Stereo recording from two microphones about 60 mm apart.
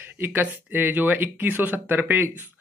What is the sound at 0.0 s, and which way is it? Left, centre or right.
Speech, right.